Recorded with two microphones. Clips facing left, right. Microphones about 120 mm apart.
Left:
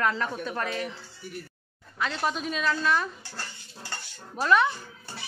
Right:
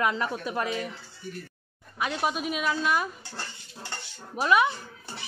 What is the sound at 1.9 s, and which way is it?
A woman's voice, 15° right (ahead or behind).